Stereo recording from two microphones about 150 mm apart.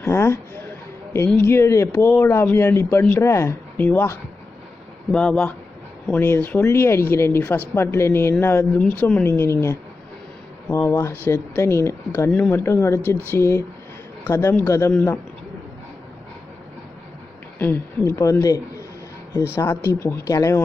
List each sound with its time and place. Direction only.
0.0 s a woman's voice: 15° left (ahead or behind)
18.1 s speech: 20° left (ahead or behind)